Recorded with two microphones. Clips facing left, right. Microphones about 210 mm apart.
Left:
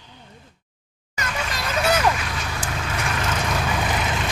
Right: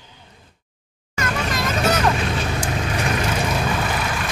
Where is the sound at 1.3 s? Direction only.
40° right (ahead or behind).